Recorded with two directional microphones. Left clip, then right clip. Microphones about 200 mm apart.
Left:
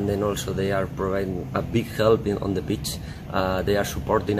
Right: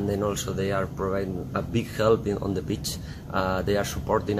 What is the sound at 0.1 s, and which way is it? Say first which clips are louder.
Speech: left 2 dB; centre (ahead or behind).